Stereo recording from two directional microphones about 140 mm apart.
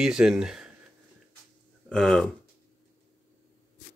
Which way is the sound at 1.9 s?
5° left (ahead or behind).